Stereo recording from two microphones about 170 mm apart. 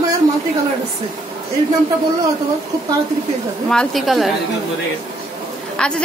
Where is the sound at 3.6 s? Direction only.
Centre (ahead or behind).